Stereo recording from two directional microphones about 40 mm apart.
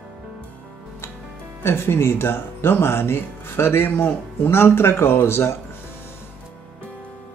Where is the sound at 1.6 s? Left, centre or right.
Left.